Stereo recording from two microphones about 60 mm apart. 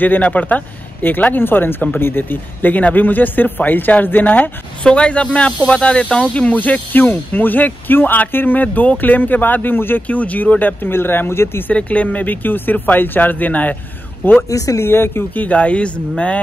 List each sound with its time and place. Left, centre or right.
0.0 s speech: left
4.8 s speech: centre; by 11.7 s left
11.7 s speech: left
15.3 s speech: left